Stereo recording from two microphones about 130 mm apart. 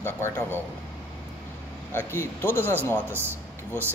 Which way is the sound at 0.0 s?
15° left (ahead or behind).